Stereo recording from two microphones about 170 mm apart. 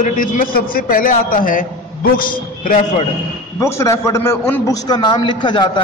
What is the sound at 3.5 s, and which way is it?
A man's voice, 15° left (ahead or behind).